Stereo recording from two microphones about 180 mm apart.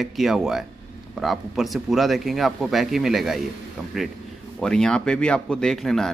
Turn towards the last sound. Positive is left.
turn(degrees=0)  # may be behind; listen again after turning